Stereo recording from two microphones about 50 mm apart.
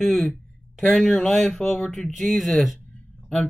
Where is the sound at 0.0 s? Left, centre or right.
Centre.